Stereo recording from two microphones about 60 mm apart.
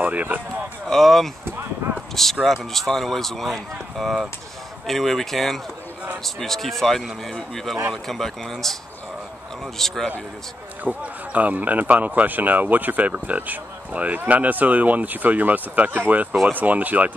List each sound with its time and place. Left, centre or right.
0.0 s speech: right
0.8 s speech: centre
2.4 s speech: centre
9.8 s speech: centre
10.8 s speech: right